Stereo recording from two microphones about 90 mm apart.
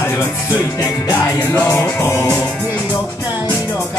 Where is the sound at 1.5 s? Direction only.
30° left (ahead or behind).